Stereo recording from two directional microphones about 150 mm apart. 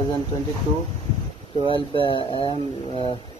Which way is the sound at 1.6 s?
35° left (ahead or behind).